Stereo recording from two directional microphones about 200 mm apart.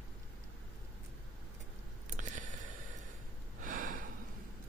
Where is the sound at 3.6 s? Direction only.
45° right (ahead or behind).